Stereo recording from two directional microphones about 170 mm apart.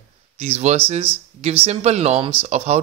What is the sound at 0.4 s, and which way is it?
Speech, 40° right (ahead or behind).